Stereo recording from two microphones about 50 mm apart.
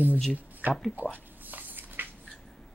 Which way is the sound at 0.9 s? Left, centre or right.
Right.